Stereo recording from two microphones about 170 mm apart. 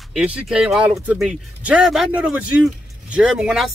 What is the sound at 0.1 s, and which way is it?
Speech, 5° right (ahead or behind).